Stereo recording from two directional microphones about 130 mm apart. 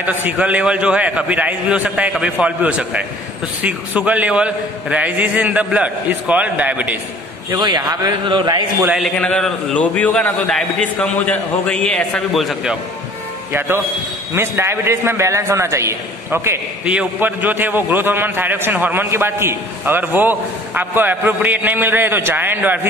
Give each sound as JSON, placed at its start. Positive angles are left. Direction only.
{"t": 0.0, "sound": "a man's voice", "side_deg": -15}
{"t": 7.5, "sound": "a man's voice", "side_deg": -35}
{"t": 8.9, "sound": "a man's voice", "side_deg": 5}
{"t": 13.5, "sound": "a man's voice", "side_deg": -15}
{"t": 16.8, "sound": "a man's voice", "side_deg": -10}